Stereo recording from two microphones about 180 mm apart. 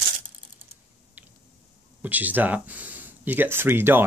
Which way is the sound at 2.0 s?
10° right (ahead or behind).